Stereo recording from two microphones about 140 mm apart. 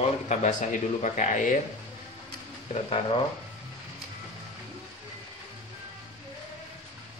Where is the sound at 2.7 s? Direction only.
45° left (ahead or behind).